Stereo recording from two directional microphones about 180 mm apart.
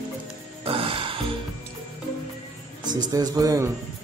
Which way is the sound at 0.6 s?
30° right (ahead or behind).